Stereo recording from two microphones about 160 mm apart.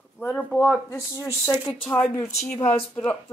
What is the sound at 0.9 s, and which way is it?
Speech, 15° left (ahead or behind).